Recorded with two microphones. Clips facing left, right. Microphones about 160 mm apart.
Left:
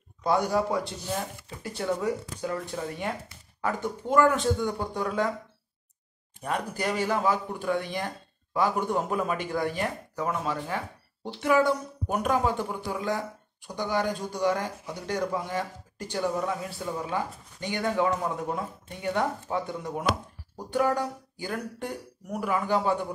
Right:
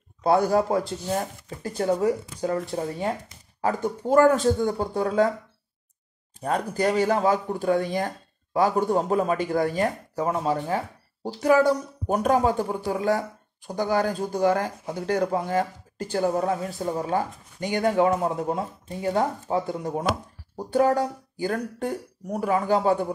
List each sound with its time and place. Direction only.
0.2 s speech: 30° right (ahead or behind)
0.5 s speech: 45° right (ahead or behind)
6.4 s speech: 35° right (ahead or behind)
17.9 s speech: 30° right (ahead or behind)
20.7 s speech: 45° right (ahead or behind)